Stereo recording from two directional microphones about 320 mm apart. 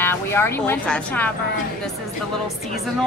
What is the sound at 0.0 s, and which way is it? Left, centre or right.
Speech, centre.